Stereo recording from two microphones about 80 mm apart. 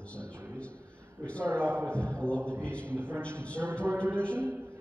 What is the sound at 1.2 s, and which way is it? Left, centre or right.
A man's voice, centre.